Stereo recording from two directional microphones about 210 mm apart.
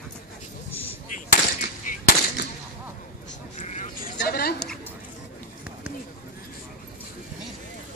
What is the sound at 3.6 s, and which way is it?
Vehicle, 35° left (ahead or behind).